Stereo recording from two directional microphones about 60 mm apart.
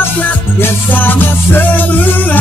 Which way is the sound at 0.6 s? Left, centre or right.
Left.